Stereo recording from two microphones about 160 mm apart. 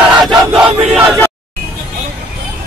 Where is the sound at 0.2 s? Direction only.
30° right (ahead or behind).